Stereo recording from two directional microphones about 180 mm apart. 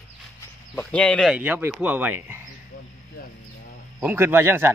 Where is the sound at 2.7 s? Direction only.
50° left (ahead or behind).